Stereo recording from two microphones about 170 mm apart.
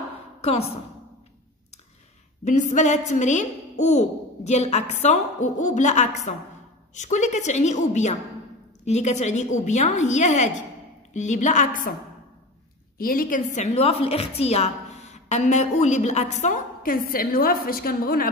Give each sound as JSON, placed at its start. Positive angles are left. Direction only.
{"t": 0.4, "sound": "a woman's voice", "side_deg": 35}
{"t": 2.4, "sound": "a woman's voice", "side_deg": 45}
{"t": 12.9, "sound": "a woman's voice", "side_deg": 60}